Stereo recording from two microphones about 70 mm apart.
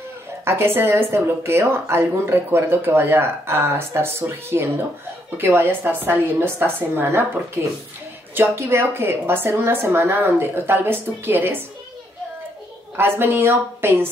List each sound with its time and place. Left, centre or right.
0.5 s speech: right
8.4 s speech: right
12.9 s speech: right